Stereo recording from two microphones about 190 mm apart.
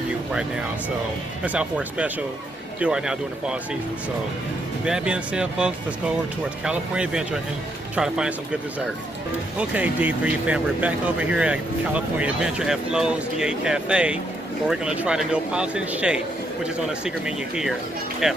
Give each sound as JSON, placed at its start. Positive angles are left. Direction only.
{"t": 1.4, "sound": "speech", "side_deg": -10}
{"t": 4.8, "sound": "speech", "side_deg": -5}
{"t": 9.6, "sound": "speech", "side_deg": -10}
{"t": 18.2, "sound": "speech", "side_deg": -5}